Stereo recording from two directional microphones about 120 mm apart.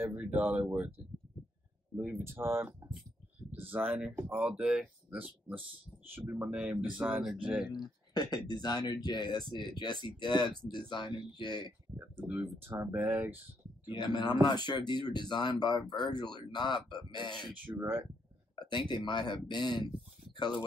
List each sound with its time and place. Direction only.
0.1 s speech: 10° right (ahead or behind)
2.0 s speech: 20° right (ahead or behind)
7.7 s speech: 35° left (ahead or behind)
12.3 s speech: 15° right (ahead or behind)
13.9 s speech: 40° left (ahead or behind)
17.7 s speech: 20° right (ahead or behind)
18.6 s speech: 40° left (ahead or behind)